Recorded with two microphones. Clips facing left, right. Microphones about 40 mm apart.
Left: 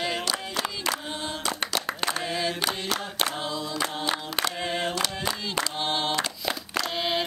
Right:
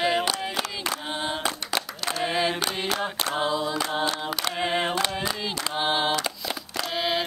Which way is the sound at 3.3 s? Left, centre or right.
Right.